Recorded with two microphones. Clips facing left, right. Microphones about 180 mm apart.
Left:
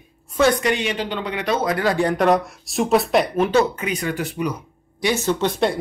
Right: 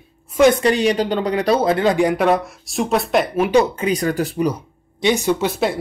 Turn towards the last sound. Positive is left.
turn(degrees=-5)  # may be behind; listen again after turning